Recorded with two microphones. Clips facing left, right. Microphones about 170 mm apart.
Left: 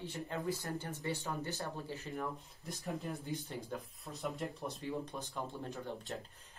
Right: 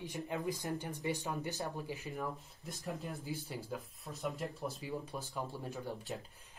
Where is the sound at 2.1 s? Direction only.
Centre (ahead or behind).